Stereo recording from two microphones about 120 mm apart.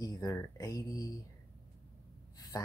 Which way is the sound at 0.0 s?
30° left (ahead or behind).